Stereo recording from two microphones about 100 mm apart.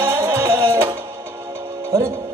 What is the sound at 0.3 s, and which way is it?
Music, 30° right (ahead or behind).